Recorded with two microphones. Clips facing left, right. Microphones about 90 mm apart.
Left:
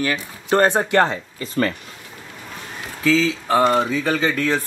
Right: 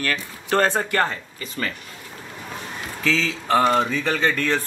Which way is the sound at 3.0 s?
5° left (ahead or behind).